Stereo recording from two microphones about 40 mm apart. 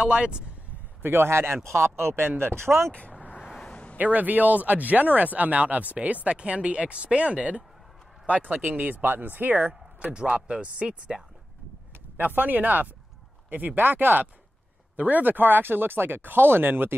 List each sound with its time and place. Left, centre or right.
0.0 s speech: right
1.0 s speech: right
2.9 s vehicle: left
3.7 s a sound: left
4.0 s speech: right
9.6 s a sound: right
10.1 s speech: right
12.2 s speech: right